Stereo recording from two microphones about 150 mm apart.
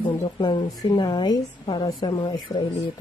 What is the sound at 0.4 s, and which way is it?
A woman's voice, 30° left (ahead or behind).